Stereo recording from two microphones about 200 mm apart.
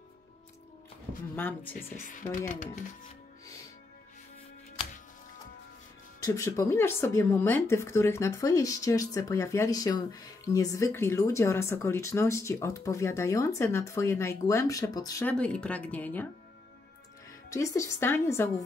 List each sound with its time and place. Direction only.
1.3 s speech: 10° left (ahead or behind)
1.8 s speech: 45° left (ahead or behind)
6.2 s speech: 15° left (ahead or behind)
15.2 s speech: 5° left (ahead or behind)
17.5 s speech: 15° left (ahead or behind)